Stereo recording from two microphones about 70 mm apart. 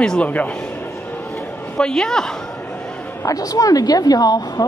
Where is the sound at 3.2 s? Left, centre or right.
Left.